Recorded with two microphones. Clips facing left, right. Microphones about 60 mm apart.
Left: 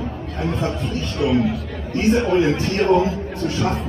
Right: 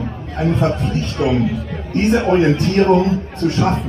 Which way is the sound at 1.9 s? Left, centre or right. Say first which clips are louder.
Right 3 dB; right.